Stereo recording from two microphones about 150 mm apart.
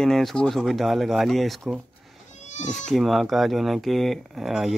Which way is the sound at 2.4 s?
50° left (ahead or behind).